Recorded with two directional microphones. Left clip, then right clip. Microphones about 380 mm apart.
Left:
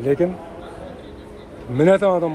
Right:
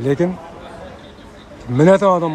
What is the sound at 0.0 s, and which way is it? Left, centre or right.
Speech, centre.